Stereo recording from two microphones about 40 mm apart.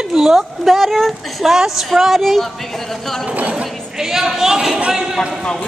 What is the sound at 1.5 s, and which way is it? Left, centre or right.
Speech, centre.